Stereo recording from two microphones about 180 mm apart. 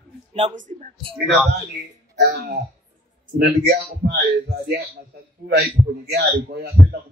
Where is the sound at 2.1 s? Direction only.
65° right (ahead or behind).